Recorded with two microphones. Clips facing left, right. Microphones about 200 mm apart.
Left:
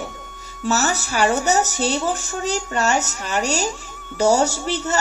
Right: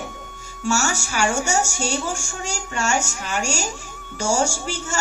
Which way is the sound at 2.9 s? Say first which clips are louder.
Left 2 dB; 10° right (ahead or behind).